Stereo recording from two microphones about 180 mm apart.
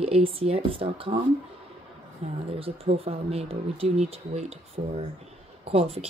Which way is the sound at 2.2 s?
35° right (ahead or behind).